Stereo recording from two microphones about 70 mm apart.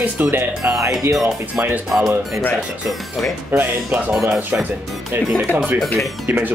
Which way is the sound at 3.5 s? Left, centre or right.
Right.